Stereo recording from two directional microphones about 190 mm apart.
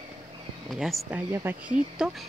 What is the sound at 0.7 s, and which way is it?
Speech, 5° right (ahead or behind).